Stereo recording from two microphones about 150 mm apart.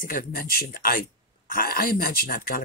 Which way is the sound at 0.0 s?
70° left (ahead or behind).